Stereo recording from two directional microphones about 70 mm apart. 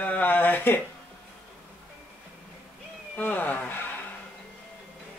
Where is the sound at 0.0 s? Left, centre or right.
Left.